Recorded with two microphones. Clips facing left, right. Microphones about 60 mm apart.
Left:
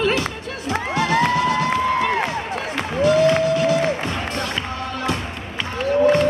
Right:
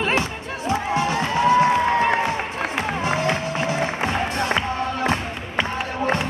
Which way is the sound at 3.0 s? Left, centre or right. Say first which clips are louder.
Left 10 dB; right.